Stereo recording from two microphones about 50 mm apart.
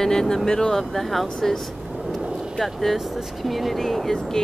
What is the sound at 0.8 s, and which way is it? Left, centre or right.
Speech, centre.